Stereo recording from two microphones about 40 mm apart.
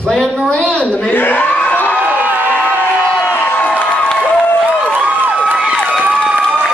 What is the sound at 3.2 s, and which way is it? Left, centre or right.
Crowd, left.